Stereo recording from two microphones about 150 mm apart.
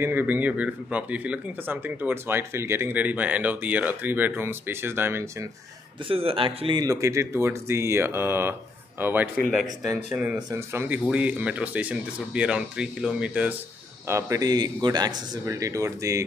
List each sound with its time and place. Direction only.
0.0 s speech: 15° right (ahead or behind)
6.0 s speech: 40° right (ahead or behind); by 9.3 s 10° right (ahead or behind)
9.4 s speech: centre (ahead or behind)
14.0 s speech: 20° right (ahead or behind)